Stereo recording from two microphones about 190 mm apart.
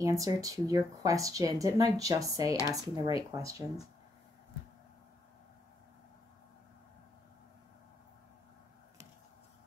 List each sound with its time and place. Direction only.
0.0 s speech: 15° right (ahead or behind)